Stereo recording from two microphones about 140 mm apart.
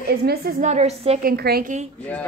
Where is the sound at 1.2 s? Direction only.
90° right.